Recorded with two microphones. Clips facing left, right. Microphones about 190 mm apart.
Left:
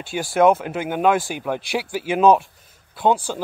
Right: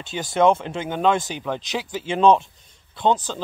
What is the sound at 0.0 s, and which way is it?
Speech, 10° left (ahead or behind).